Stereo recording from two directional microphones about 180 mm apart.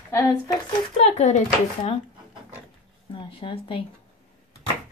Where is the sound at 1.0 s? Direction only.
40° left (ahead or behind).